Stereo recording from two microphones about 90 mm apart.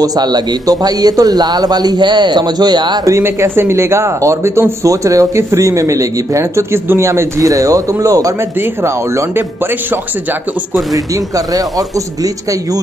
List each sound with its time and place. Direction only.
0.0 s a man's voice: 45° right (ahead or behind)
3.1 s a man's voice: 30° right (ahead or behind)